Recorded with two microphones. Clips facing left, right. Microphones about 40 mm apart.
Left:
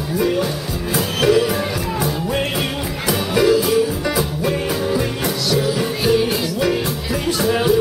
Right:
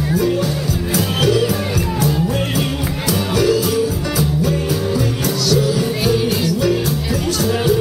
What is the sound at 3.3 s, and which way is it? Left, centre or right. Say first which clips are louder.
Music: left 2 dB; centre.